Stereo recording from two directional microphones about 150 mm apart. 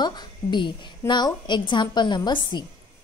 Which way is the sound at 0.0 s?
30° left (ahead or behind).